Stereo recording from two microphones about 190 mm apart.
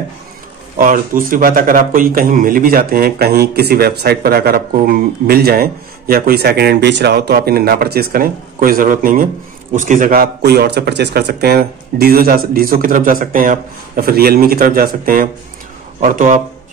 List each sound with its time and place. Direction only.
0.7 s a man's voice: 45° right (ahead or behind)